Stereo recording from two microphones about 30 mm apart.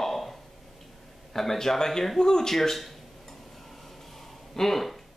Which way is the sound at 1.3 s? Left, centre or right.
Centre.